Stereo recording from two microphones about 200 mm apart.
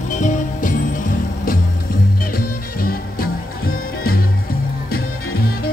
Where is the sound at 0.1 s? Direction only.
40° left (ahead or behind).